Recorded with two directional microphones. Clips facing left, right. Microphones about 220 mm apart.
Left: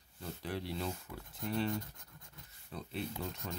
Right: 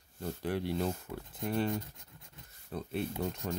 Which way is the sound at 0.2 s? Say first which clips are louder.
Right 6 dB; 50° right (ahead or behind).